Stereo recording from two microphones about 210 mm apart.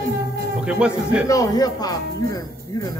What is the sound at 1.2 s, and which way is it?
Speech, 15° left (ahead or behind).